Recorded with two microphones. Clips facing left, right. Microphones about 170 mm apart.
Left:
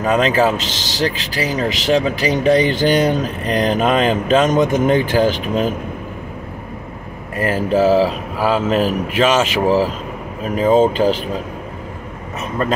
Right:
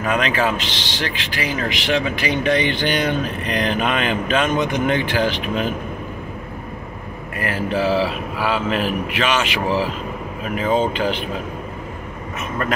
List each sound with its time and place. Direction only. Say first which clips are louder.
0.0 s speech: left 5 dB; 35° left (ahead or behind)
7.3 s speech: left 6 dB; 40° left (ahead or behind)